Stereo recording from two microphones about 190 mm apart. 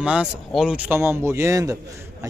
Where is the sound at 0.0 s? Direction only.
5° right (ahead or behind).